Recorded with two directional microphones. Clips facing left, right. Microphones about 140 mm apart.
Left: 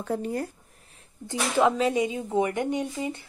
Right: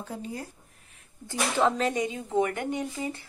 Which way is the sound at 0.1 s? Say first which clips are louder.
Left 10 dB; 60° left (ahead or behind).